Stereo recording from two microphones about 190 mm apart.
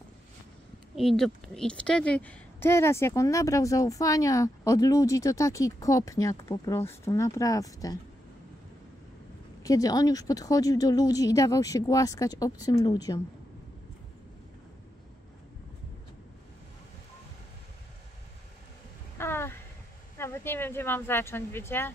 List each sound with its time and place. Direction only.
0.9 s a woman's voice: centre (ahead or behind); by 8.0 s 20° left (ahead or behind)
9.6 s a woman's voice: 20° left (ahead or behind)
19.1 s a sound: 15° left (ahead or behind)
20.2 s speech: 15° left (ahead or behind)